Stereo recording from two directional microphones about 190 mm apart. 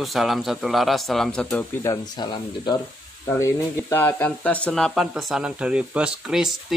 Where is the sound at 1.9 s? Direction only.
20° left (ahead or behind).